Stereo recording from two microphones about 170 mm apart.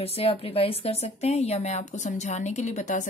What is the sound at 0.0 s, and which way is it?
A woman's voice, 35° left (ahead or behind).